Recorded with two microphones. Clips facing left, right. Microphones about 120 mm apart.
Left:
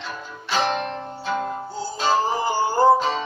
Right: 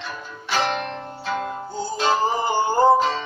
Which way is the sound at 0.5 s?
20° left (ahead or behind).